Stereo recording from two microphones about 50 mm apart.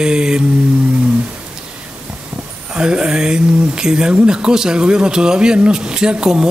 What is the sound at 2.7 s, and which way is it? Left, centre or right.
Speech, centre.